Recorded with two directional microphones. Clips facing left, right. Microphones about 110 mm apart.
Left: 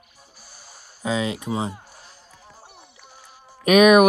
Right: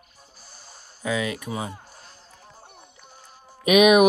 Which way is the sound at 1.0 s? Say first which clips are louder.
Left 2 dB; 20° left (ahead or behind).